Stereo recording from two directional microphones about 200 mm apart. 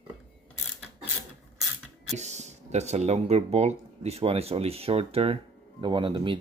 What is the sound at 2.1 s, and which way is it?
Speech, 35° right (ahead or behind).